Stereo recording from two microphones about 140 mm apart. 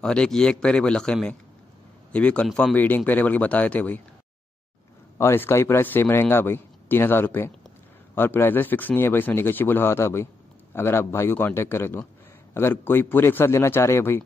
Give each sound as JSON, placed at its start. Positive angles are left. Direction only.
{"t": 0.0, "sound": "speech", "side_deg": 5}
{"t": 5.1, "sound": "speech", "side_deg": 15}